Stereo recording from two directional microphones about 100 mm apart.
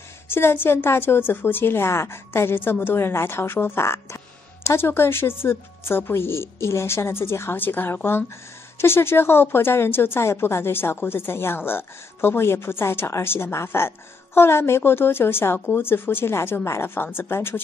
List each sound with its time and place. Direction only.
0.3 s a woman's voice: 25° left (ahead or behind)